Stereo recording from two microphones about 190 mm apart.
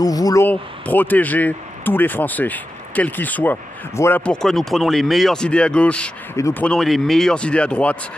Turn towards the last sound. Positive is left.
turn(degrees=5)  # may be behind; listen again after turning